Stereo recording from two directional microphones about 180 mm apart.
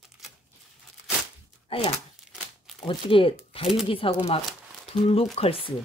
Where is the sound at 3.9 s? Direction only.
30° left (ahead or behind).